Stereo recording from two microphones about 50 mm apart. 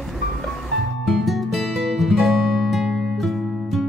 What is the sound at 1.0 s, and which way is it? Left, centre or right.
Music, centre.